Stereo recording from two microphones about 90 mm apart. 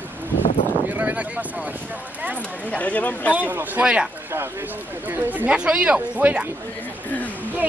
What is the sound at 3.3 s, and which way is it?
Speech, 20° right (ahead or behind).